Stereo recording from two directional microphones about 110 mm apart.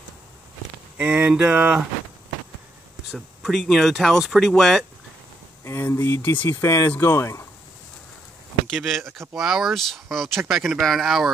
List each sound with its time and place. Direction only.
0.9 s speech: 10° right (ahead or behind)
3.1 s speech: centre (ahead or behind)
5.6 s speech: 20° left (ahead or behind)
8.6 s speech: centre (ahead or behind)